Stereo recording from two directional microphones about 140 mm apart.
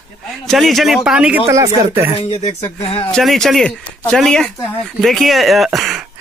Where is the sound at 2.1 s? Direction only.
50° left (ahead or behind).